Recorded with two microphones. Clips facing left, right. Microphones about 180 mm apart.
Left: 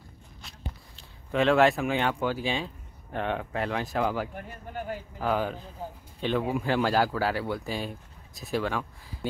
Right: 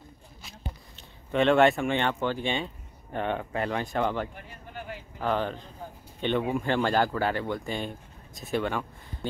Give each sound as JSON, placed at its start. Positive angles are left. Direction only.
{"t": 0.4, "sound": "speech", "side_deg": 0}
{"t": 4.4, "sound": "a sound", "side_deg": 45}
{"t": 5.2, "sound": "speech", "side_deg": 5}